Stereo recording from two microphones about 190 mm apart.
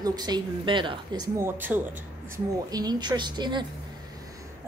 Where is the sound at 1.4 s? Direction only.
10° right (ahead or behind).